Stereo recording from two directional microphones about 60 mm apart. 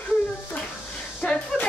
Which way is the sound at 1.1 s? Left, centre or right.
Centre.